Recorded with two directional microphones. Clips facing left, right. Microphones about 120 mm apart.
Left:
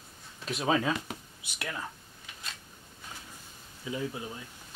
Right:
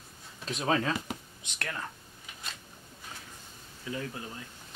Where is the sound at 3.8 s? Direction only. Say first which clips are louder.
Left 2 dB; 15° left (ahead or behind).